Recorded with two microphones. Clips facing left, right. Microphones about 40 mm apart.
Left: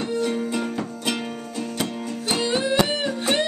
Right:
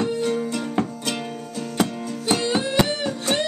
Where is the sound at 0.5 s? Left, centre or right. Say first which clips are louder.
Right 1 dB; centre.